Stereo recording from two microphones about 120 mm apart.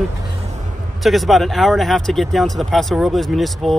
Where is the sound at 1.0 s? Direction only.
Centre (ahead or behind).